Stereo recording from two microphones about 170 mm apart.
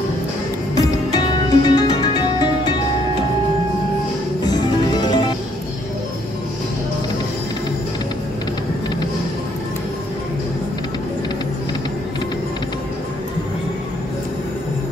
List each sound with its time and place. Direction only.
0.7 s music: 25° left (ahead or behind)
4.5 s music: 25° left (ahead or behind)